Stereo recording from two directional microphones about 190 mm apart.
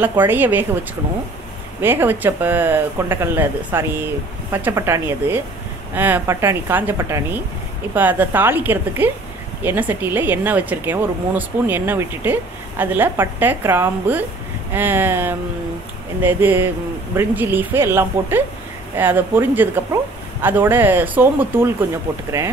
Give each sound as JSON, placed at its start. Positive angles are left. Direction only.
{"t": 0.0, "sound": "speech", "side_deg": -10}
{"t": 1.8, "sound": "speech", "side_deg": -10}